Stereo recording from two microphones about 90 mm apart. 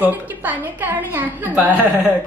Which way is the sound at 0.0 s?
20° right (ahead or behind).